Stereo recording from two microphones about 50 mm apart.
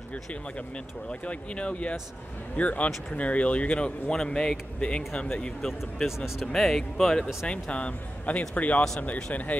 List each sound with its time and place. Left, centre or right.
0.1 s speech: left
6.0 s speech: centre
6.4 s speech: centre
7.7 s speech: left